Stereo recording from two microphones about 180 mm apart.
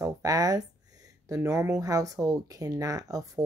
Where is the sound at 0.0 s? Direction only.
20° right (ahead or behind).